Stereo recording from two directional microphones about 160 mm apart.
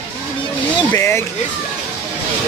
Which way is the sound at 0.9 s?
15° left (ahead or behind).